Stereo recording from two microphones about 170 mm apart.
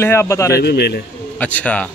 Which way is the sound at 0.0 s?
15° left (ahead or behind).